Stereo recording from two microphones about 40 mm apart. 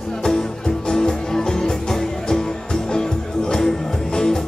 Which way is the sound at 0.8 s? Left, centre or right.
Centre.